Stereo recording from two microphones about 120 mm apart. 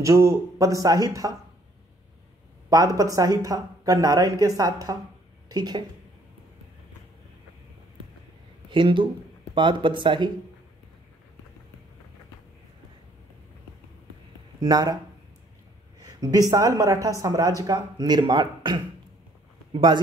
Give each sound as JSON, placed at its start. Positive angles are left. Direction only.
{"t": 0.0, "sound": "speech", "side_deg": -25}
{"t": 2.7, "sound": "speech", "side_deg": -30}
{"t": 8.6, "sound": "speech", "side_deg": -45}
{"t": 14.6, "sound": "speech", "side_deg": -35}
{"t": 16.0, "sound": "speech", "side_deg": -30}